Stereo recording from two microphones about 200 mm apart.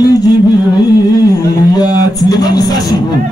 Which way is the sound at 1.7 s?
20° left (ahead or behind).